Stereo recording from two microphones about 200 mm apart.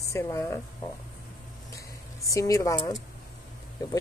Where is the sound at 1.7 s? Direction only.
15° left (ahead or behind).